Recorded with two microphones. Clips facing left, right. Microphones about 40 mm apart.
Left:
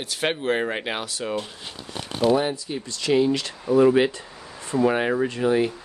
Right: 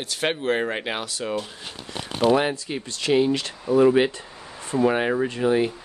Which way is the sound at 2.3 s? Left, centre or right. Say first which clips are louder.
Right 1 dB; right.